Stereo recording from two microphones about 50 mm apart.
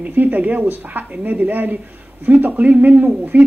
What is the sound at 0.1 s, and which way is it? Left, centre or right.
Speech, right.